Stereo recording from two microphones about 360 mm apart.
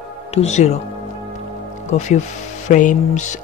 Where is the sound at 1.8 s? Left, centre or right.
Centre.